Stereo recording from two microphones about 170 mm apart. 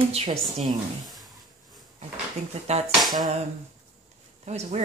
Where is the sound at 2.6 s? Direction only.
40° right (ahead or behind).